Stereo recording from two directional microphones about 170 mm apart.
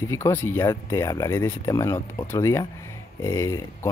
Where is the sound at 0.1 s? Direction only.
15° left (ahead or behind).